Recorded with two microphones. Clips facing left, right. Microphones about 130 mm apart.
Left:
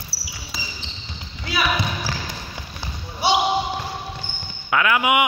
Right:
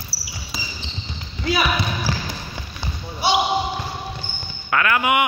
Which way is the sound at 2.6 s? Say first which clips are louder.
Right 1 dB; 5° left (ahead or behind).